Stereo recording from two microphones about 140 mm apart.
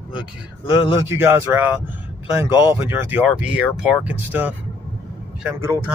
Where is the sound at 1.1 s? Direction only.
15° right (ahead or behind).